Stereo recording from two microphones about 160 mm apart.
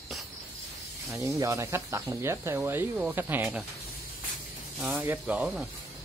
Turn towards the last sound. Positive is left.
turn(degrees=-5)  # may be behind; listen again after turning